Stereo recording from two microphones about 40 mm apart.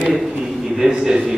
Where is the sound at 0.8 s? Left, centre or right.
Centre.